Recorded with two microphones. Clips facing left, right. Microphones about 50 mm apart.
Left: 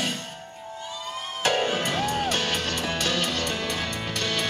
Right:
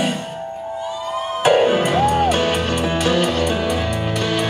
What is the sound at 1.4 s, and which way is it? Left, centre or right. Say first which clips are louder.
Music: right 10 dB; centre.